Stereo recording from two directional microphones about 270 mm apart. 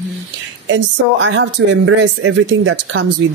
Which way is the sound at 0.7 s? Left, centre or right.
Right.